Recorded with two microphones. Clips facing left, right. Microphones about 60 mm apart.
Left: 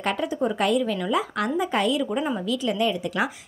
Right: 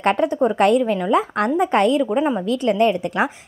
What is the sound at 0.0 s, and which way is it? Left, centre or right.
Speech, right.